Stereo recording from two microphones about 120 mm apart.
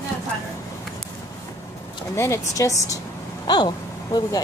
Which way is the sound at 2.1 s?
25° left (ahead or behind).